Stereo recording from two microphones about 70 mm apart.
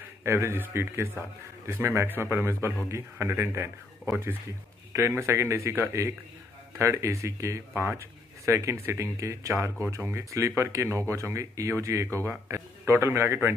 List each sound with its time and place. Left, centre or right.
0.2 s speech: right